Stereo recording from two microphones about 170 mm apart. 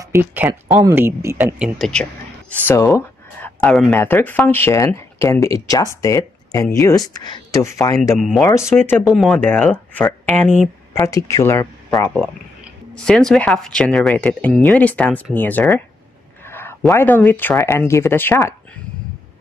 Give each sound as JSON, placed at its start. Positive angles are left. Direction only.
{"t": 0.0, "sound": "speech", "side_deg": -15}
{"t": 1.8, "sound": "speech", "side_deg": 5}
{"t": 2.6, "sound": "speech", "side_deg": 15}
{"t": 8.2, "sound": "speech", "side_deg": 0}
{"t": 8.5, "sound": "speech", "side_deg": 15}
{"t": 9.0, "sound": "speech", "side_deg": 0}
{"t": 11.9, "sound": "speech", "side_deg": 0}
{"t": 16.4, "sound": "a sound", "side_deg": 15}
{"t": 16.9, "sound": "speech", "side_deg": 10}